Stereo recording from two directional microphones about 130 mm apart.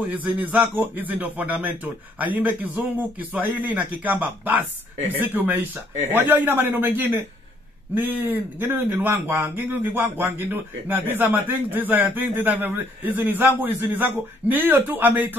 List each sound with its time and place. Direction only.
0.1 s speech: 10° right (ahead or behind)